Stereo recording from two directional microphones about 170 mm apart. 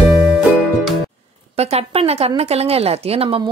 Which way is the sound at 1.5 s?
40° right (ahead or behind).